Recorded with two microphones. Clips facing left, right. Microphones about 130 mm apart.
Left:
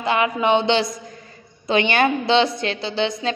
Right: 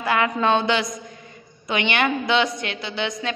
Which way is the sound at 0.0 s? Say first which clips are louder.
Left 1 dB; 20° left (ahead or behind).